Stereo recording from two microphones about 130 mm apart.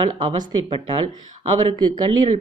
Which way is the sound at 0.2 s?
40° right (ahead or behind).